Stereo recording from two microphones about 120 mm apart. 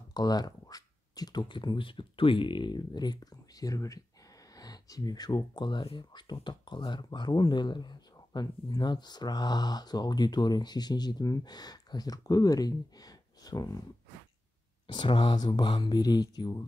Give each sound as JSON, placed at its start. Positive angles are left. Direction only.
{"t": 0.1, "sound": "speech", "side_deg": 35}
{"t": 14.9, "sound": "speech", "side_deg": 40}